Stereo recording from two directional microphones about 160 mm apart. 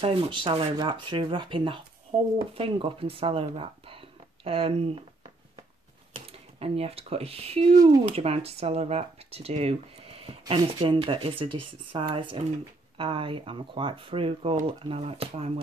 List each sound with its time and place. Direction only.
0.0 s speech: 35° right (ahead or behind)
6.1 s speech: 35° right (ahead or behind)